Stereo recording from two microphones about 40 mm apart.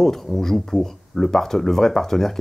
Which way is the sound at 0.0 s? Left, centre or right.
Centre.